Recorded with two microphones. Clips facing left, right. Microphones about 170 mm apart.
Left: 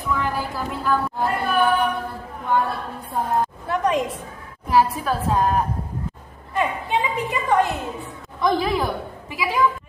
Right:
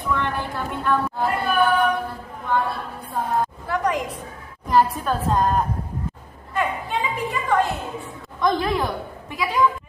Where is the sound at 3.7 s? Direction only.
25° left (ahead or behind).